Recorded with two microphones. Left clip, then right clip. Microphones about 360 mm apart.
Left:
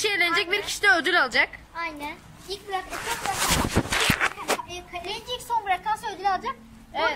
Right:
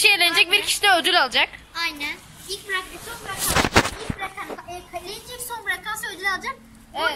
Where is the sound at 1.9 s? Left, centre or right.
Centre.